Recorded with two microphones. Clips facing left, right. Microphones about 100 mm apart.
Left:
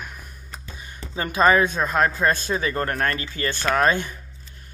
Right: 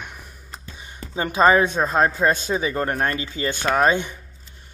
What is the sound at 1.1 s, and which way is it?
Speech, 25° right (ahead or behind).